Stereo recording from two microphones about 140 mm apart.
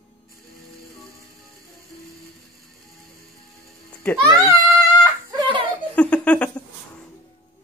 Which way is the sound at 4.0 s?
15° left (ahead or behind).